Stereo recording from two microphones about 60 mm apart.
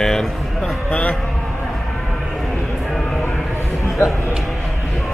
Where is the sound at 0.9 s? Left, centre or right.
Left.